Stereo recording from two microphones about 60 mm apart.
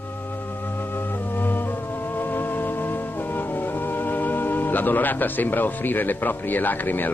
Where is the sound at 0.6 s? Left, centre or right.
Left.